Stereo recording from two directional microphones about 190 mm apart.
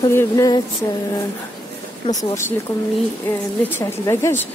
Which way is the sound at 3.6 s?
10° left (ahead or behind).